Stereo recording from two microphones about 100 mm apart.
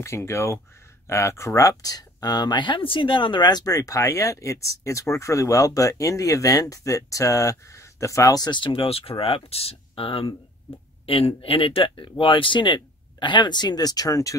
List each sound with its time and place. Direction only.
0.0 s speech: 30° left (ahead or behind)